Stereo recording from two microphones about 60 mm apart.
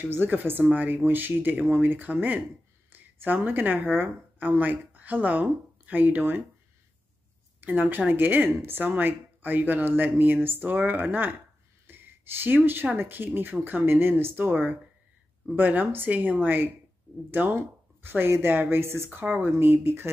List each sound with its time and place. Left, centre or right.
0.0 s a woman's voice: right
7.6 s speech: right
11.9 s a sound: right
12.9 s speech: right